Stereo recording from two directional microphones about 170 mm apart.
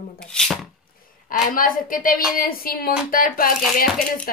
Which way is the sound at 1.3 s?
55° left (ahead or behind).